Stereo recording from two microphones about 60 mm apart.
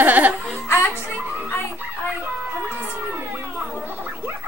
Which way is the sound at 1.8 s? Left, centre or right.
Right.